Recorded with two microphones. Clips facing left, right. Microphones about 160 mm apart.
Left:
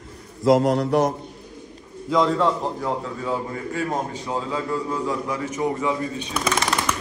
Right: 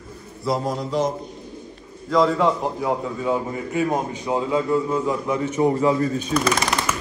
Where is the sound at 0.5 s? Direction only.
80° left; by 1.1 s 65° left (ahead or behind).